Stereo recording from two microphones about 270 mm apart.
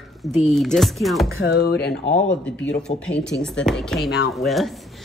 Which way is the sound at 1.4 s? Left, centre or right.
Left.